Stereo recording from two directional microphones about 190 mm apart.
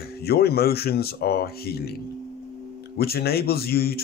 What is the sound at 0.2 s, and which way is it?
A man's voice, 55° left (ahead or behind).